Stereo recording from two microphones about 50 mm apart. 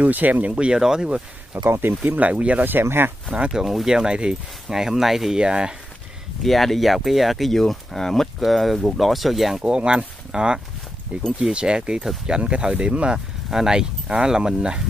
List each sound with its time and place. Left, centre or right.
0.0 s speech: right; by 1.2 s centre
1.5 s speech: right
2.6 s speech: right
3.3 s speech: right
3.6 s speech: centre
5.4 s speech: centre
6.4 s speech: centre
9.6 s speech: centre